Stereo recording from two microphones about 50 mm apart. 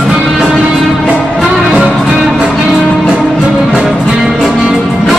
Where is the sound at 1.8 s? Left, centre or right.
Centre.